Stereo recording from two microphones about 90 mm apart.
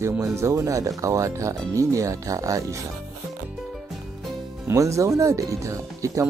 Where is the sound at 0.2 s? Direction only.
35° right (ahead or behind).